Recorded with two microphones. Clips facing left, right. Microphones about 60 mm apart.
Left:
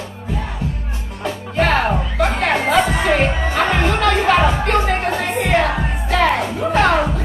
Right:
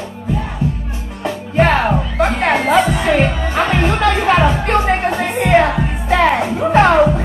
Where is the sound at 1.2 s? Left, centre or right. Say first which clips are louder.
Right 4 dB; right.